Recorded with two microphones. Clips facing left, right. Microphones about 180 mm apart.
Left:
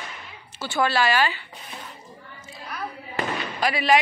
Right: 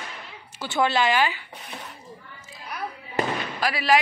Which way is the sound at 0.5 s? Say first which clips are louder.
Even; 20° right (ahead or behind).